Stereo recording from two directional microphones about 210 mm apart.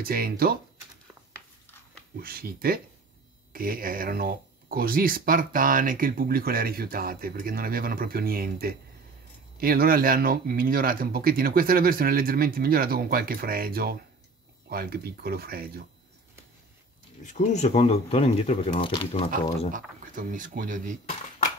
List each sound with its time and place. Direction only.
0.0 s speech: 45° right (ahead or behind)
2.1 s speech: 45° right (ahead or behind)
17.2 s speech: 35° left (ahead or behind)
19.7 s speech: 40° right (ahead or behind)